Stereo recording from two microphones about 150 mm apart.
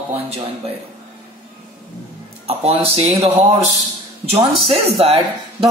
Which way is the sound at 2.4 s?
40° right (ahead or behind).